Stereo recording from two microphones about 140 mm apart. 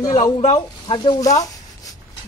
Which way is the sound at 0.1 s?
55° left (ahead or behind).